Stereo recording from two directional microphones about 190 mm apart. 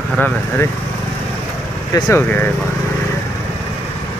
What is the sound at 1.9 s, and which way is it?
Speech, 15° left (ahead or behind).